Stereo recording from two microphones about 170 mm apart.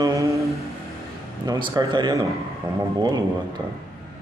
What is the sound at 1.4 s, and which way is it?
A man's voice, 25° right (ahead or behind).